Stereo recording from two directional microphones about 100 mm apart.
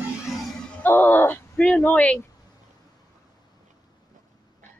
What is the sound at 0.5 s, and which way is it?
Music, 5° left (ahead or behind).